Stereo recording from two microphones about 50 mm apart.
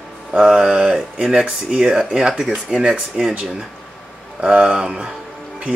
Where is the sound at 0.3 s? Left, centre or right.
Centre.